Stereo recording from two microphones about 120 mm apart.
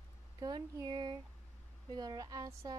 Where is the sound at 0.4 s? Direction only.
30° right (ahead or behind).